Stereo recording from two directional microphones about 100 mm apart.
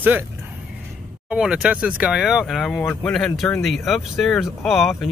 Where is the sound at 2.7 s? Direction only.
10° left (ahead or behind).